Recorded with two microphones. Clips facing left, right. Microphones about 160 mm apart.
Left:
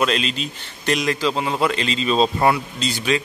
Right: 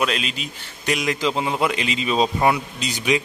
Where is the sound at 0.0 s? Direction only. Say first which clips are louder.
Left 3 dB; 5° right (ahead or behind).